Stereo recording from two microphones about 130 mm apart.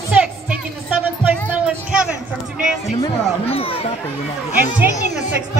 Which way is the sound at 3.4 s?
50° left (ahead or behind).